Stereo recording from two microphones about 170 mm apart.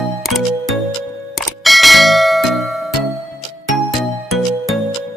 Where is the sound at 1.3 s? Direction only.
Centre (ahead or behind).